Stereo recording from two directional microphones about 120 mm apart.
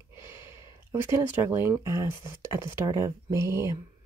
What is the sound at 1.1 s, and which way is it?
Speech, 20° right (ahead or behind).